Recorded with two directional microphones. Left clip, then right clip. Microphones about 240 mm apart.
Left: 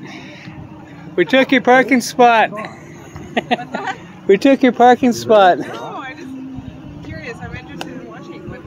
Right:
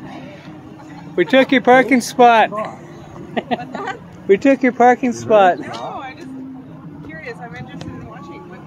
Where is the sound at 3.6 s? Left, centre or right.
Left.